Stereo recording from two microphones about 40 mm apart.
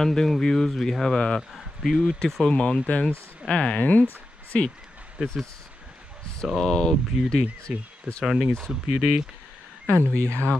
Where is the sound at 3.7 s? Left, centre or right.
Left.